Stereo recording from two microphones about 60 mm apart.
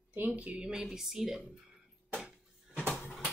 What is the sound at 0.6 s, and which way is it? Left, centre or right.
Speech, centre.